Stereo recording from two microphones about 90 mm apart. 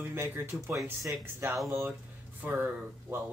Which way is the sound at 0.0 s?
25° right (ahead or behind).